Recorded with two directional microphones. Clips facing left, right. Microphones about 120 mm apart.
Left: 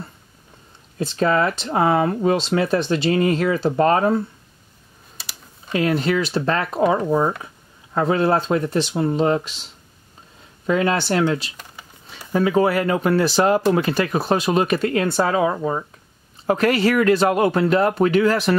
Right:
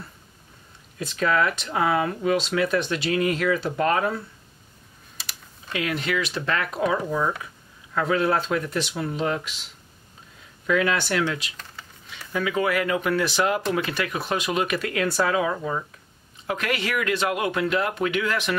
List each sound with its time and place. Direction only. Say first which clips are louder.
0.9 s speech: left 4 dB; 35° left (ahead or behind)
5.7 s speech: left 7 dB; 35° left (ahead or behind)
10.7 s speech: left 4 dB; 35° left (ahead or behind)